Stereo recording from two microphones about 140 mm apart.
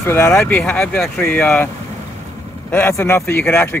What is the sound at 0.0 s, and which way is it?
Speech, 15° left (ahead or behind).